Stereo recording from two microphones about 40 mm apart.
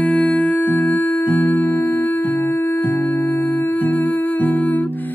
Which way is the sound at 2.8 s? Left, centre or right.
Left.